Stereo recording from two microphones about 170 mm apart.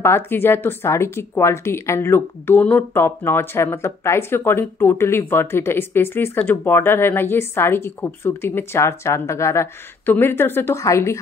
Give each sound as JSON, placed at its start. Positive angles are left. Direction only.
{"t": 0.0, "sound": "speech", "side_deg": 15}